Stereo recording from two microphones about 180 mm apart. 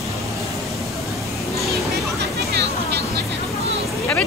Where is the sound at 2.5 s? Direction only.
65° right (ahead or behind).